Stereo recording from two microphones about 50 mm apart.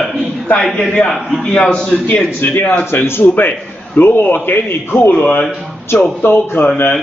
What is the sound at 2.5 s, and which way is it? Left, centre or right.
A man's voice, left.